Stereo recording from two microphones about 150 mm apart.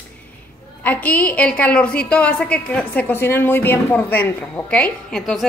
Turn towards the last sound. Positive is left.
turn(degrees=0)  # may be behind; listen again after turning